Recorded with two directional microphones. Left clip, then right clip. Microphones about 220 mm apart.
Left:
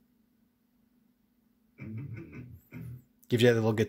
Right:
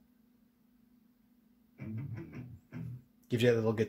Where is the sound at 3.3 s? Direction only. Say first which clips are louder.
Left 4 dB; 40° left (ahead or behind).